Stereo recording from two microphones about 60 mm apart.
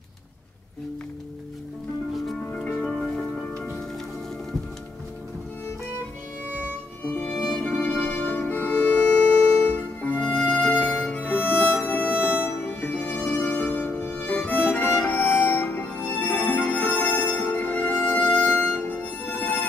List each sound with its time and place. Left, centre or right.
3.0 s music: centre
7.2 s music: left